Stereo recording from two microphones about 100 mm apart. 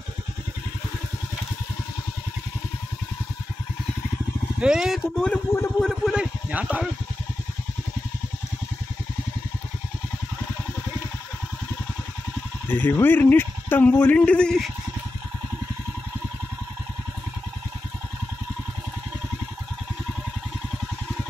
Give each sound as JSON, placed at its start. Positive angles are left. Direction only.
{"t": 4.6, "sound": "speech", "side_deg": -5}
{"t": 5.1, "sound": "a man's voice", "side_deg": 10}
{"t": 6.1, "sound": "speech", "side_deg": -10}
{"t": 12.6, "sound": "speech", "side_deg": 20}